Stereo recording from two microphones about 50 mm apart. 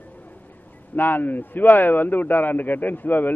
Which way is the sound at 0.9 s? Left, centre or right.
Left.